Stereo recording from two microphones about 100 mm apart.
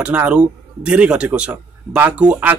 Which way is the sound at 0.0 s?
15° right (ahead or behind).